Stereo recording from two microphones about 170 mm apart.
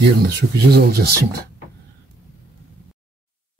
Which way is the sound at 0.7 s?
70° right (ahead or behind).